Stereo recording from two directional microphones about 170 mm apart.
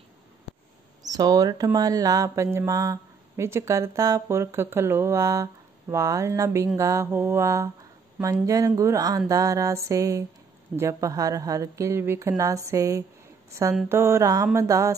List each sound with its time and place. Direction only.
1.0 s speech: 20° right (ahead or behind)
6.8 s mantra: 15° right (ahead or behind)
8.2 s speech: 20° right (ahead or behind)
13.8 s mantra: 15° right (ahead or behind)